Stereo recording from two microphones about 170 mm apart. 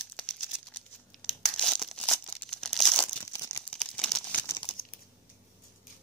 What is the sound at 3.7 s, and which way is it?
Crumpling, 5° left (ahead or behind).